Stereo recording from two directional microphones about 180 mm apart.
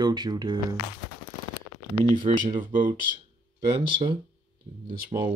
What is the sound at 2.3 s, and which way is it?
Speech, 40° right (ahead or behind).